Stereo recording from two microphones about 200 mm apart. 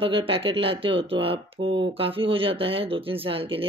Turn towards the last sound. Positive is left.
turn(degrees=-25)  # may be behind; listen again after turning